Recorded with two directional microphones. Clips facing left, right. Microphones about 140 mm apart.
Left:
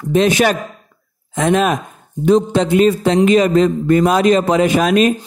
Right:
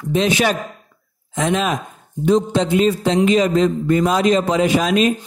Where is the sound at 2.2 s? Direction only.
60° left (ahead or behind).